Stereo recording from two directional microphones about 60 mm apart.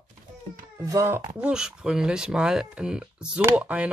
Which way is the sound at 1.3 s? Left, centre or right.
Centre.